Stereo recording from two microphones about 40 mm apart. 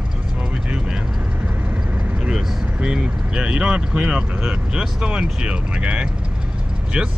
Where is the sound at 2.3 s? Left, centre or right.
Centre.